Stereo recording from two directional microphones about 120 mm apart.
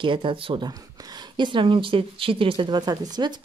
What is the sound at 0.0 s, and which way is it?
Speech, 45° right (ahead or behind).